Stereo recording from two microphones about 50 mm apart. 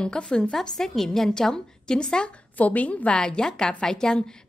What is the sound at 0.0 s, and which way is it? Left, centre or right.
A woman's voice, centre.